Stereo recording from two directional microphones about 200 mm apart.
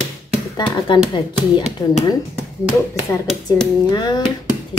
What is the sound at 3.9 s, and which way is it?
Speech, 20° left (ahead or behind).